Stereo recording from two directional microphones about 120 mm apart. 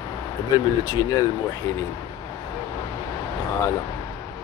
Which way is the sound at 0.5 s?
30° left (ahead or behind).